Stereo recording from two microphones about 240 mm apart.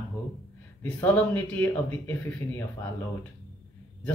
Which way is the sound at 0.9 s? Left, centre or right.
Centre.